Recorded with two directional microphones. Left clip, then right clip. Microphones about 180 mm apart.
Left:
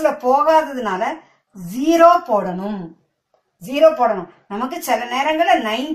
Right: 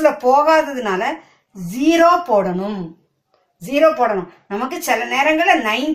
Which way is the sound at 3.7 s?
30° right (ahead or behind).